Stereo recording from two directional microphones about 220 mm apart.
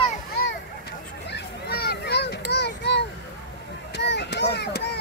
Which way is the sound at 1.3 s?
50° left (ahead or behind).